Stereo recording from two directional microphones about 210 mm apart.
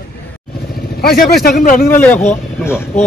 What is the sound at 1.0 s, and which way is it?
Speech, 45° left (ahead or behind).